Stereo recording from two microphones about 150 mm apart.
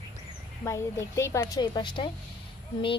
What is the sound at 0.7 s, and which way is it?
A woman's voice, 20° left (ahead or behind).